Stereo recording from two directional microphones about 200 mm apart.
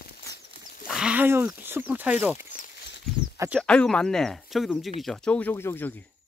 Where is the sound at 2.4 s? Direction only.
40° left (ahead or behind).